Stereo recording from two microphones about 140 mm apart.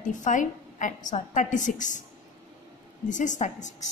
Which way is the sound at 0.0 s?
65° left (ahead or behind).